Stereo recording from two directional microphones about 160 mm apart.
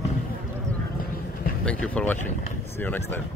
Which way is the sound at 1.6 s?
10° left (ahead or behind).